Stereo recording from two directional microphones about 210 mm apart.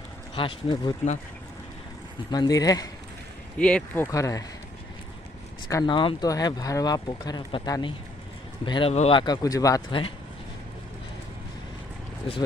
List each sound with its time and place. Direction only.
0.3 s speech: 25° left (ahead or behind)
2.3 s speech: 20° left (ahead or behind)
3.5 s speech: 5° left (ahead or behind)
5.7 s speech: 20° left (ahead or behind)